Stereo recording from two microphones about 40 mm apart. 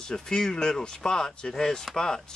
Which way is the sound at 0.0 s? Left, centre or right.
Centre.